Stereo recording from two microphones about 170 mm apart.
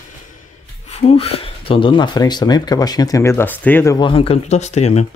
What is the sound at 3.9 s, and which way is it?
Speech, 30° left (ahead or behind).